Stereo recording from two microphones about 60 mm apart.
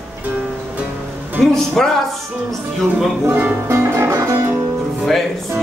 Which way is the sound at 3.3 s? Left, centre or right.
Right.